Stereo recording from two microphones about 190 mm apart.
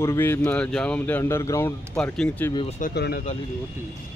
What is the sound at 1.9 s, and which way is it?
Speech, 5° left (ahead or behind).